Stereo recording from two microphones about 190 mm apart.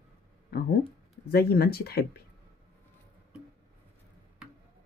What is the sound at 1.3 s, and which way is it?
Speech, 55° left (ahead or behind).